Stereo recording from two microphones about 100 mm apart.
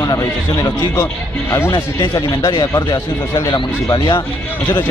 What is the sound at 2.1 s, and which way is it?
Speech, 40° left (ahead or behind).